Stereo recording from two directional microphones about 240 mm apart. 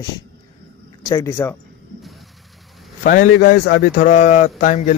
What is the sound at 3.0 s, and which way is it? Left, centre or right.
A man's voice, left.